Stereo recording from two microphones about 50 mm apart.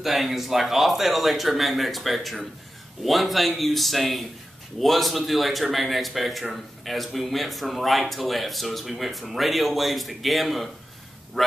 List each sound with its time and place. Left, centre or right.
0.0 s a man's voice: centre